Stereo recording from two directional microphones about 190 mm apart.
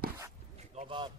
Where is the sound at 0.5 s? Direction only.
30° right (ahead or behind).